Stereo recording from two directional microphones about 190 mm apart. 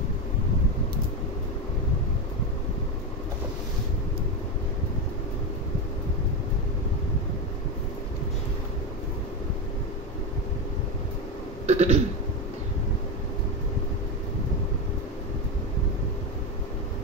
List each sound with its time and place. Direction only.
11.6 s burping: 35° right (ahead or behind)